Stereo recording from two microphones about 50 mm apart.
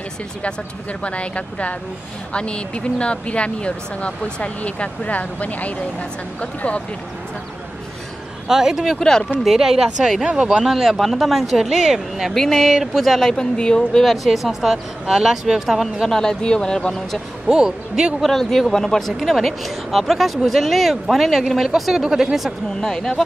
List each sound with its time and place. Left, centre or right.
1.0 s speech: left
8.5 s speech: centre
9.0 s speech: centre
9.4 s speech: centre
10.6 s speech: centre
13.2 s speech: centre
14.1 s speech: centre
16.1 s speech: centre
17.5 s speech: centre
18.2 s speech: centre
22.8 s speech: centre